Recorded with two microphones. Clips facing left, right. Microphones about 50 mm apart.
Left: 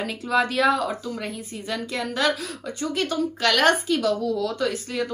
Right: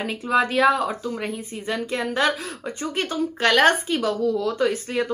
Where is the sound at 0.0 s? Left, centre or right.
Right.